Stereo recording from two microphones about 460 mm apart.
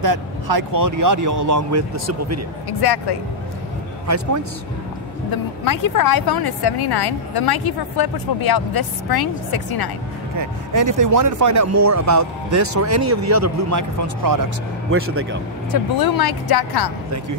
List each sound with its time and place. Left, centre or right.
0.0 s speech: right
2.8 s speech: left
5.7 s a woman's voice: left
10.4 s speech: right
14.9 s speech: right
15.7 s a woman's voice: left